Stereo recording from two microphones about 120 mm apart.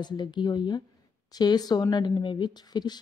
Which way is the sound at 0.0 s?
35° left (ahead or behind).